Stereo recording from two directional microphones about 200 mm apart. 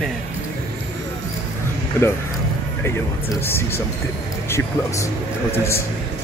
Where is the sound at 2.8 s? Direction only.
10° left (ahead or behind).